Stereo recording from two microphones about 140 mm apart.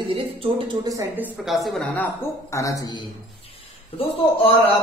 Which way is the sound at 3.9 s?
40° left (ahead or behind).